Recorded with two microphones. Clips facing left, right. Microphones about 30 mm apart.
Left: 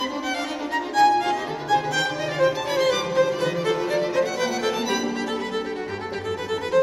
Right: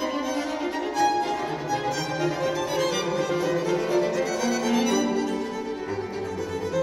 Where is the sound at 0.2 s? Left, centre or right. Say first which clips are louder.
Even; left.